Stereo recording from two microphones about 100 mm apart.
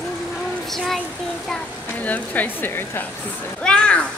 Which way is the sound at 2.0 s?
15° left (ahead or behind).